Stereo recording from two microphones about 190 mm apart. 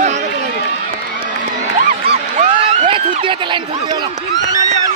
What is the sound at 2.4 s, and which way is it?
Speech, 25° right (ahead or behind).